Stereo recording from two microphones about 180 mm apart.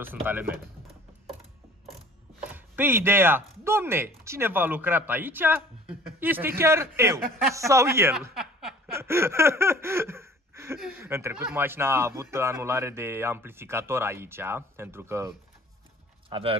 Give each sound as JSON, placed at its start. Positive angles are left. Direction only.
{"t": 0.0, "sound": "speech", "side_deg": -10}
{"t": 2.5, "sound": "speech", "side_deg": -10}
{"t": 8.4, "sound": "chuckle", "side_deg": -5}
{"t": 8.9, "sound": "a sound", "side_deg": -15}
{"t": 11.0, "sound": "speech", "side_deg": -15}
{"t": 16.3, "sound": "speech", "side_deg": -30}